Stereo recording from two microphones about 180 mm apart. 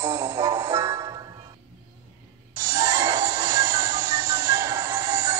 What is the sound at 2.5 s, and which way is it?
Music, 15° right (ahead or behind).